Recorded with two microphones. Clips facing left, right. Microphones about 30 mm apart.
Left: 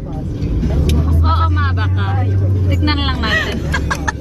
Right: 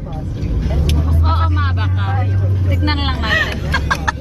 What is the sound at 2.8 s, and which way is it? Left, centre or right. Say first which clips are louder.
Speech: left 2 dB; centre.